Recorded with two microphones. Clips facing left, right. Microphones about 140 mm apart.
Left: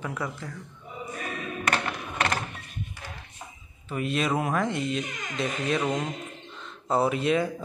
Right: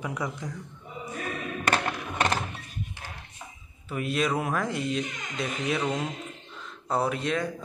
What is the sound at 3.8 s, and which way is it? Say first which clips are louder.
Speech: even; centre (ahead or behind).